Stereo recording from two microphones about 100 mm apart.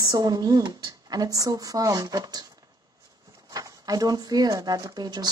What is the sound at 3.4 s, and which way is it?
Speech, 35° right (ahead or behind).